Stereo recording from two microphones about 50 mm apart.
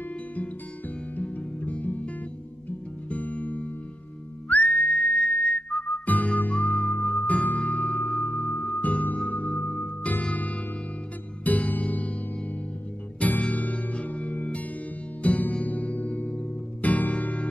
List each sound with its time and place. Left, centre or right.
1.1 s music: left
3.1 s music: left
4.5 s whistling: left
5.9 s music: left
13.2 s music: left